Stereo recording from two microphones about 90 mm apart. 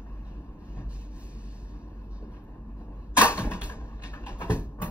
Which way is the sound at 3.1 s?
15° right (ahead or behind).